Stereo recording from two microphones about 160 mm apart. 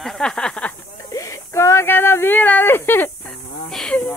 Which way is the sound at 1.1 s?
20° left (ahead or behind).